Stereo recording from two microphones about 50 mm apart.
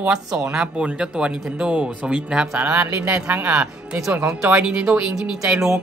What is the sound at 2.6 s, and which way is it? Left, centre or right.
Speech, right.